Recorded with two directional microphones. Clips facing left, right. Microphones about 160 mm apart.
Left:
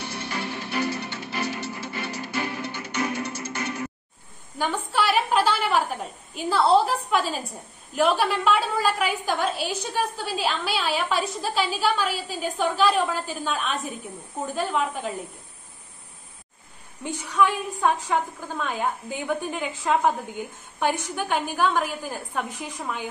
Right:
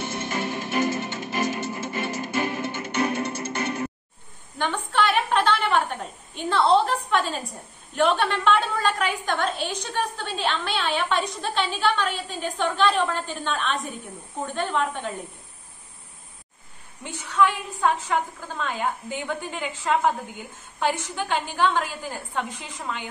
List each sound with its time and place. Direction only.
0.3 s music: 20° right (ahead or behind)
1.5 s music: 45° right (ahead or behind)
2.9 s music: 30° right (ahead or behind)
4.6 s a woman's voice: 5° left (ahead or behind)
17.0 s a woman's voice: 15° left (ahead or behind)